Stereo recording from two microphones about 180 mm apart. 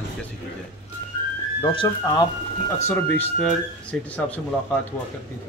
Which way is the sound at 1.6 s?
25° left (ahead or behind).